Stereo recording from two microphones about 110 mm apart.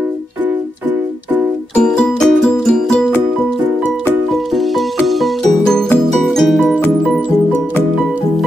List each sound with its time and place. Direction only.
1.8 s music: 5° left (ahead or behind)
4.3 s music: centre (ahead or behind)